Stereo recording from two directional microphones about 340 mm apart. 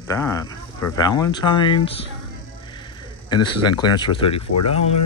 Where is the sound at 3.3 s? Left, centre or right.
Left.